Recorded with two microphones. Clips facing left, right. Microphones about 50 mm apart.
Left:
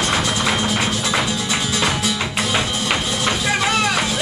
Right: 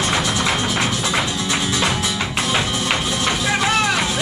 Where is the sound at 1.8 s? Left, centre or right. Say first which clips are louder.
Even; centre.